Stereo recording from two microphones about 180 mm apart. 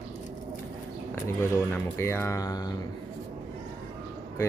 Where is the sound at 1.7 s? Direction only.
15° left (ahead or behind).